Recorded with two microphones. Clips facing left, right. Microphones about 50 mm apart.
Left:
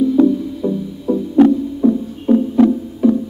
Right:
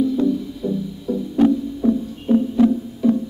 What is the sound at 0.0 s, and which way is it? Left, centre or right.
Music, left.